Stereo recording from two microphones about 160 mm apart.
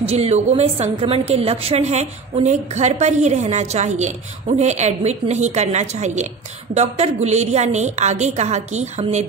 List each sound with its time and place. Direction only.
0.1 s a woman's voice: 40° right (ahead or behind)